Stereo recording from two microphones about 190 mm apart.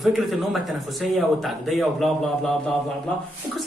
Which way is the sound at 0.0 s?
Centre (ahead or behind).